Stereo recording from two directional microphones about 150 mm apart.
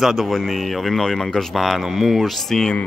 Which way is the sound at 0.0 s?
Centre (ahead or behind).